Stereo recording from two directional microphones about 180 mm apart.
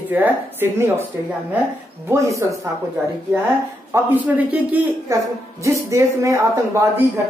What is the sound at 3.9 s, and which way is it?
Speech, 10° right (ahead or behind).